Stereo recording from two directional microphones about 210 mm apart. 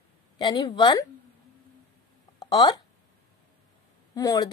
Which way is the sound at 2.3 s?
20° left (ahead or behind).